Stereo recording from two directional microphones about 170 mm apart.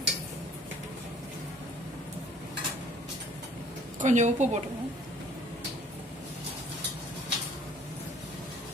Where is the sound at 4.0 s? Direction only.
45° right (ahead or behind).